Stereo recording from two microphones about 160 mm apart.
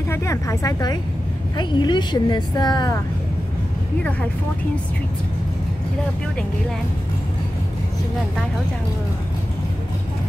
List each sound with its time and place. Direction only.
0.1 s speech: 20° left (ahead or behind)